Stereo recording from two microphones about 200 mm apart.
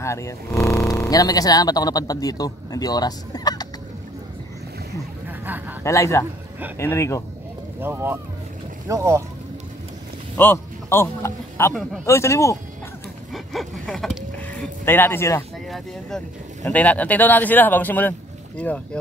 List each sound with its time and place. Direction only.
0.0 s speech: 15° left (ahead or behind)
5.4 s a man's voice: 10° right (ahead or behind)
5.9 s speech: 15° left (ahead or behind)
7.8 s speech: 10° right (ahead or behind)
10.3 s speech: 10° left (ahead or behind)
13.3 s a sound: centre (ahead or behind)
14.9 s speech: 10° left (ahead or behind)
16.6 s speech: 5° left (ahead or behind)